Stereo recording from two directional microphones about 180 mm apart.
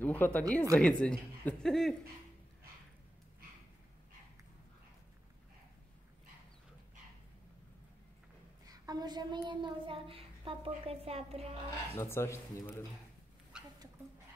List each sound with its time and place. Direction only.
0.0 s a man's voice: 10° left (ahead or behind)
8.6 s a woman's voice: 20° right (ahead or behind)
12.0 s a man's voice: 15° left (ahead or behind)
13.5 s rodents: 5° right (ahead or behind)